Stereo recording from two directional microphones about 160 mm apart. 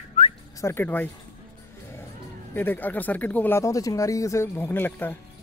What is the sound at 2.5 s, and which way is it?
Speech, 10° left (ahead or behind).